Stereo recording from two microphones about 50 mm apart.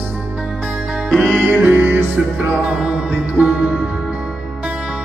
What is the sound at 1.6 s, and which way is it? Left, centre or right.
Music, right.